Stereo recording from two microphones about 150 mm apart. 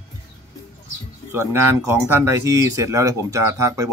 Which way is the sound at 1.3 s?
15° right (ahead or behind).